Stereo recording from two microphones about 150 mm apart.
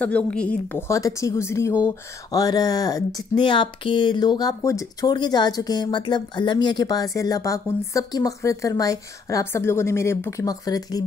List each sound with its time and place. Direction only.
0.0 s a woman's voice: 5° left (ahead or behind)
0.8 s speech: 20° left (ahead or behind)